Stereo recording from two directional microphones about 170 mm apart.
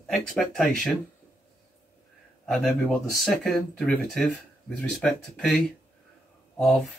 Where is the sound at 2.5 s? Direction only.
5° left (ahead or behind).